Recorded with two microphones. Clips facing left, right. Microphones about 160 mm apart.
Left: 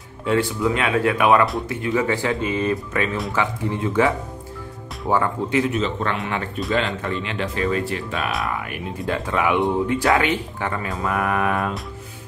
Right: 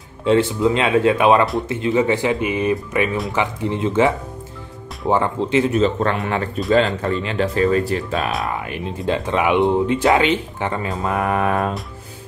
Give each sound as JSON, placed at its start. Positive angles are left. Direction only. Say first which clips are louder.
{"t": 0.2, "sound": "speech", "louder": "right 5 dB", "side_deg": -25}
{"t": 5.7, "sound": "speech", "louder": "right 5 dB", "side_deg": -40}
{"t": 8.5, "sound": "speech", "louder": "right 2 dB", "side_deg": -25}